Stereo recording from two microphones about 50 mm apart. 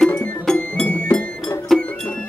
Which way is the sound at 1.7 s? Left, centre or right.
Centre.